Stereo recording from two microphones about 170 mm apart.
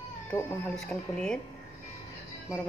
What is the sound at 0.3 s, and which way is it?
Speech, 15° left (ahead or behind).